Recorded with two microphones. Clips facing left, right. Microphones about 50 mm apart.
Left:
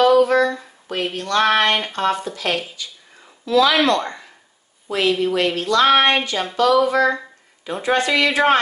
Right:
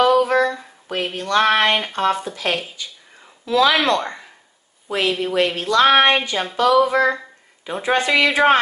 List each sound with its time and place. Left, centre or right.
0.0 s a sound: centre
3.4 s speech: right
4.0 s a woman's voice: centre